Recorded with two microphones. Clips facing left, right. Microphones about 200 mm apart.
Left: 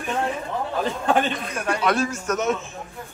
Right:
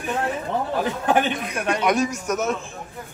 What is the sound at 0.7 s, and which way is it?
A man's voice, 10° right (ahead or behind).